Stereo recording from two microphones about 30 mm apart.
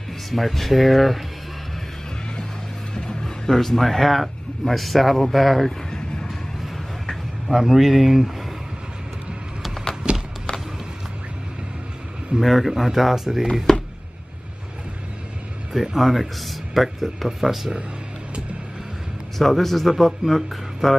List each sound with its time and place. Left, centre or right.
0.3 s speech: centre
2.9 s vehicle: left
3.5 s speech: centre
5.9 s a sound: left
7.4 s speech: centre
10.1 s run: right
12.4 s speech: centre
13.7 s a sound: centre
15.7 s speech: centre
19.3 s speech: centre